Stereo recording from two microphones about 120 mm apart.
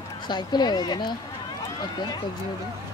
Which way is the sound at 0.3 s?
35° left (ahead or behind).